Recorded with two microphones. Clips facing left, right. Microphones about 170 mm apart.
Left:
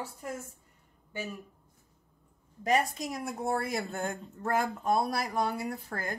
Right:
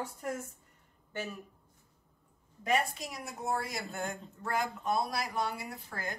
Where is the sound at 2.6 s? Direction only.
50° left (ahead or behind).